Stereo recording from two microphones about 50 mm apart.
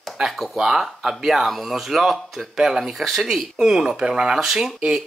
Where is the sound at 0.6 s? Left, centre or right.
Centre.